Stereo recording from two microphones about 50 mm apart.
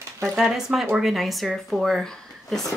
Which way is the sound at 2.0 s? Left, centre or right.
Centre.